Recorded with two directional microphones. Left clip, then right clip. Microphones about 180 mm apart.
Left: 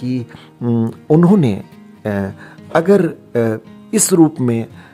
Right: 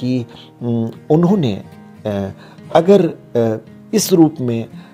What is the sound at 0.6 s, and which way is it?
Speech, 25° left (ahead or behind).